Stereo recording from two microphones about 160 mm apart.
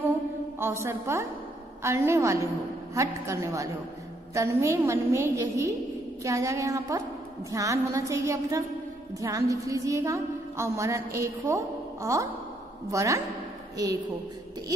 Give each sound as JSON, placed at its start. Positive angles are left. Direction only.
{"t": 0.8, "sound": "a woman's voice", "side_deg": -15}